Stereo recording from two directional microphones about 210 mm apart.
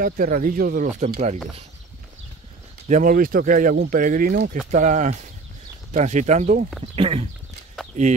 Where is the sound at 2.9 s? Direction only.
40° right (ahead or behind).